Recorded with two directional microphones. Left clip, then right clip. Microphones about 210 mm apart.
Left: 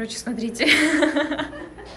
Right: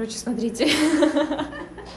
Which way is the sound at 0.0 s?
20° right (ahead or behind).